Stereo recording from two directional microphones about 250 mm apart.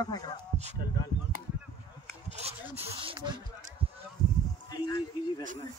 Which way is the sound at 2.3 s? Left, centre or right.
Right.